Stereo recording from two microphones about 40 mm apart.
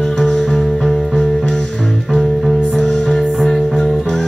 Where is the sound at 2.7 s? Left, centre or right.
Centre.